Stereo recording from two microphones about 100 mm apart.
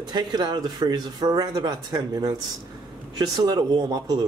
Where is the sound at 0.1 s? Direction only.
45° right (ahead or behind).